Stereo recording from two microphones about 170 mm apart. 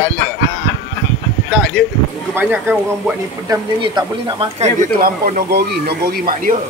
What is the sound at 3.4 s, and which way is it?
Speech, 25° right (ahead or behind).